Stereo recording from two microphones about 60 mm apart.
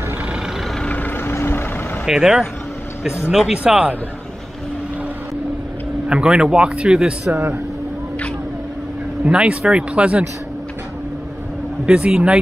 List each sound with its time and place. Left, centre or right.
0.8 s vehicle: left
2.0 s a man's voice: centre
6.0 s a man's voice: centre
9.2 s a man's voice: centre
11.8 s speech: centre